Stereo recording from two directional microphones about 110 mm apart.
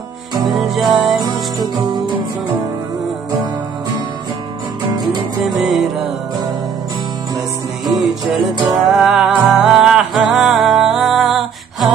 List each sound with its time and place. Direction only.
0.4 s music: centre (ahead or behind)
1.6 s music: 40° right (ahead or behind)
5.4 s music: centre (ahead or behind)
7.8 s music: centre (ahead or behind)